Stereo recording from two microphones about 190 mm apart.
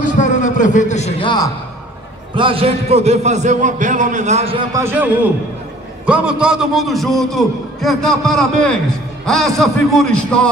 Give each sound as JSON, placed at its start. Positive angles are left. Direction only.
{"t": 0.2, "sound": "a man's voice", "side_deg": 40}
{"t": 2.3, "sound": "a man's voice", "side_deg": -30}
{"t": 4.7, "sound": "a man's voice", "side_deg": -10}